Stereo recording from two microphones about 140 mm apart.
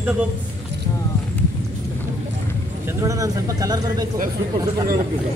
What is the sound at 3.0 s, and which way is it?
Speech, 25° right (ahead or behind).